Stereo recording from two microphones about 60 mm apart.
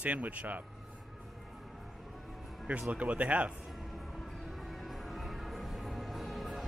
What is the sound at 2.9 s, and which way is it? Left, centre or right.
Speech, right.